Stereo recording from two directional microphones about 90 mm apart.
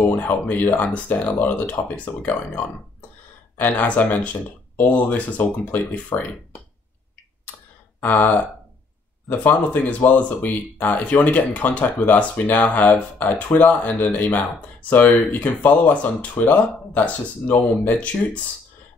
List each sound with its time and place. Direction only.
0.2 s speech: 20° left (ahead or behind)
8.0 s speech: 20° left (ahead or behind)